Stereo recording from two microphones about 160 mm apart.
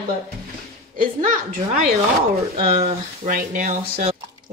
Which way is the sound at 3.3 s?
55° right (ahead or behind).